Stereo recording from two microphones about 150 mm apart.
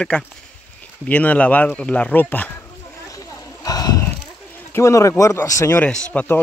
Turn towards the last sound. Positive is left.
turn(degrees=10)  # may be behind; listen again after turning